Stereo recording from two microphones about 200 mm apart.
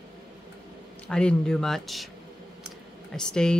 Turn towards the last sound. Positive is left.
turn(degrees=5)  # may be behind; listen again after turning